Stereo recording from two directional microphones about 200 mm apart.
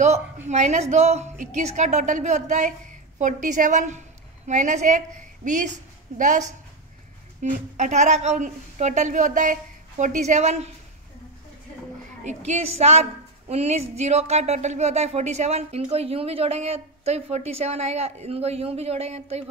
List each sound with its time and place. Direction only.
0.5 s speech: 35° right (ahead or behind)
7.7 s speech: 35° right (ahead or behind)
12.4 s speech: 30° right (ahead or behind)